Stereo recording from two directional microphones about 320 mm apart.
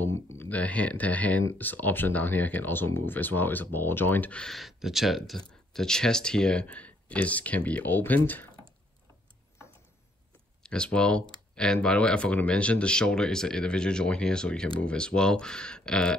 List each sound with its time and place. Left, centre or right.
0.3 s speech: centre
10.6 s speech: centre